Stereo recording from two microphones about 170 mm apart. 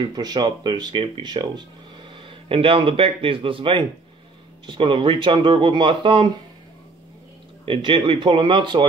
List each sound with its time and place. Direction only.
0.1 s speech: 25° right (ahead or behind)
7.6 s speech: 30° right (ahead or behind)